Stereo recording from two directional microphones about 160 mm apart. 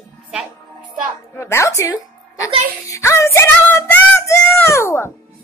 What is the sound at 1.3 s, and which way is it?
Speech, 15° left (ahead or behind).